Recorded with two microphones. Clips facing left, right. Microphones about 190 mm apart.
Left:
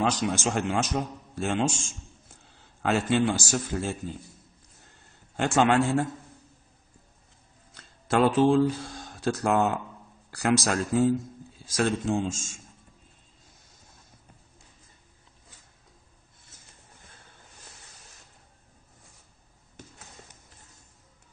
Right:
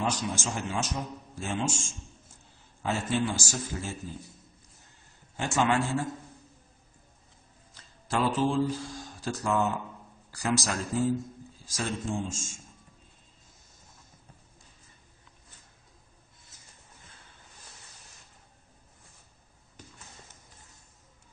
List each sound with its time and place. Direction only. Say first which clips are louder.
0.0 s a man's voice: left 5 dB; 65° left (ahead or behind)
2.8 s a man's voice: left 5 dB; 75° left (ahead or behind)
5.3 s a man's voice: left 5 dB; 60° left (ahead or behind)
7.7 s a man's voice: left 6 dB; 60° left (ahead or behind)